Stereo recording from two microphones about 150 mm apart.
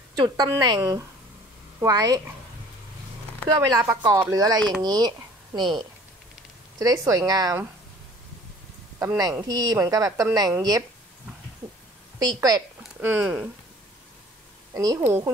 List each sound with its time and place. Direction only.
0.1 s a woman's voice: 30° right (ahead or behind)
3.5 s a woman's voice: 20° right (ahead or behind)
9.0 s a woman's voice: 25° right (ahead or behind)
12.2 s a woman's voice: 25° right (ahead or behind)
13.0 s speech: 10° right (ahead or behind)
14.7 s a woman's voice: 25° right (ahead or behind)